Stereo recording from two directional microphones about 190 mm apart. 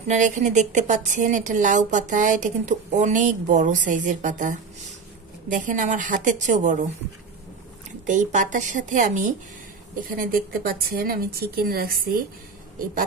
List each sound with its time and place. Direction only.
0.1 s a woman's voice: 40° right (ahead or behind)
8.1 s a woman's voice: 40° right (ahead or behind)